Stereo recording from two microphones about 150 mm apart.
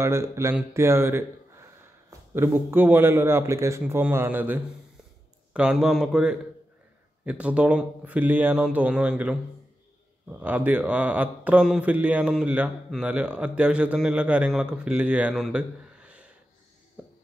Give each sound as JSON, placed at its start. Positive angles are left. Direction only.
{"t": 0.0, "sound": "a man's voice", "side_deg": -20}